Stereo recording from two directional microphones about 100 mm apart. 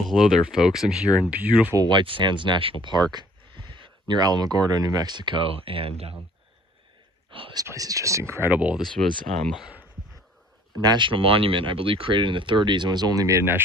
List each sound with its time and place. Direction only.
0.1 s speech: 5° right (ahead or behind)
1.8 s speech: 50° right (ahead or behind); by 6.1 s 75° right (ahead or behind)
7.2 s whispering: 60° right (ahead or behind)
7.6 s speech: 35° right (ahead or behind)
8.5 s speech: 15° right (ahead or behind)
10.8 s speech: 50° right (ahead or behind)